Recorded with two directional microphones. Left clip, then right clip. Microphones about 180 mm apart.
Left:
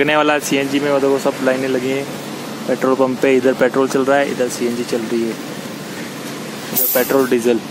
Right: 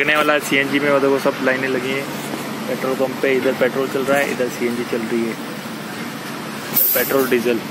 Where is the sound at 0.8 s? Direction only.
5° left (ahead or behind).